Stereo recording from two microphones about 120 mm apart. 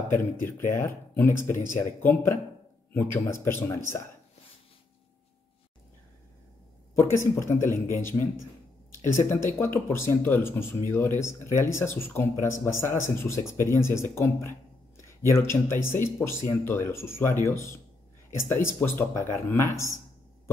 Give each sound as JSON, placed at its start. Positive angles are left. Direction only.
{"t": 0.1, "sound": "speech", "side_deg": 20}
{"t": 7.0, "sound": "speech", "side_deg": 20}